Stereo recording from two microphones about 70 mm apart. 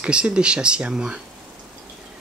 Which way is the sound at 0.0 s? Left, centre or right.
Centre.